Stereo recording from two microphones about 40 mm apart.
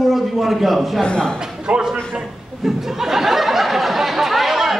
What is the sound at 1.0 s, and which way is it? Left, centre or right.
Speech, centre.